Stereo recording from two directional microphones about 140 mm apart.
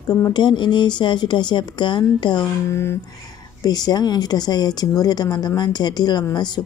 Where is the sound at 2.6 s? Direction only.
20° left (ahead or behind).